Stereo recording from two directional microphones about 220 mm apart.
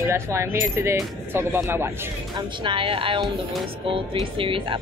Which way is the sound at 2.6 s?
25° right (ahead or behind).